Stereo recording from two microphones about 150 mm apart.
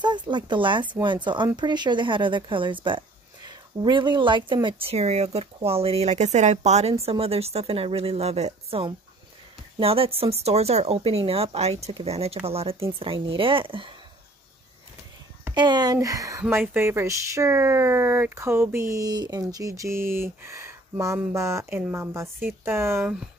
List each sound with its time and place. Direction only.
0.0 s speech: 30° right (ahead or behind)
15.5 s speech: 30° right (ahead or behind)